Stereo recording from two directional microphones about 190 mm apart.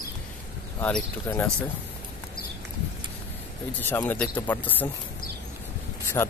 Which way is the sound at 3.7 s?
10° left (ahead or behind).